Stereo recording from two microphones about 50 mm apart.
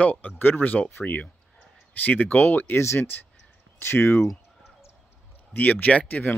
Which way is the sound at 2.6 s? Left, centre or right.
Left.